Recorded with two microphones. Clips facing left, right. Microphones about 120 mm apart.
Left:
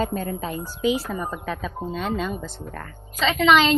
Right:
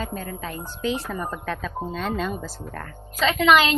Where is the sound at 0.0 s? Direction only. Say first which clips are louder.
Left 6 dB; 35° left (ahead or behind).